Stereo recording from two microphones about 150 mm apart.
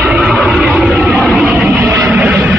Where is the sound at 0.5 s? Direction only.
5° right (ahead or behind).